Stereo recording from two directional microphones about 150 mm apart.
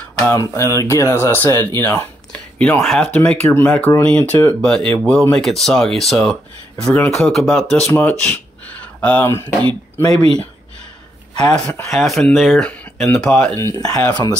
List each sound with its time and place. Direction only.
0.3 s speech: 20° left (ahead or behind)
11.3 s speech: 5° left (ahead or behind)
13.6 s speech: 20° left (ahead or behind)